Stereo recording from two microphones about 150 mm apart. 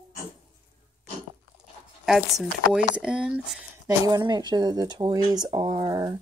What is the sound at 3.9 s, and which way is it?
Speech, 25° right (ahead or behind).